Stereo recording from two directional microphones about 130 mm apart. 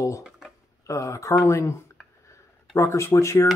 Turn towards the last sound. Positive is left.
turn(degrees=20)  # may be behind; listen again after turning